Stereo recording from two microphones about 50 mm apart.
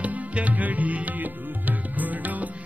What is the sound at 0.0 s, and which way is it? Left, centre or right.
Music, right.